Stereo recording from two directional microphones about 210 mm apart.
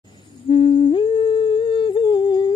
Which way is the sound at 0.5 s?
25° left (ahead or behind).